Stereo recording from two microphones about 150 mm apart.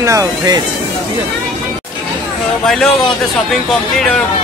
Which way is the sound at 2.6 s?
5° left (ahead or behind).